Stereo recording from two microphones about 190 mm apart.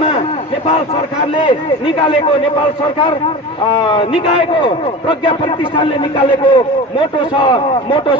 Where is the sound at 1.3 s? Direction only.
25° left (ahead or behind).